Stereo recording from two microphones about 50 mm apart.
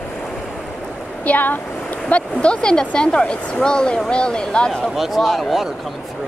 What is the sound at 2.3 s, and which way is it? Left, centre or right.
Speech, centre.